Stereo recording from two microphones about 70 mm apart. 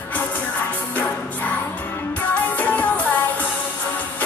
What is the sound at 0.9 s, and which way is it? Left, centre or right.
Music, left.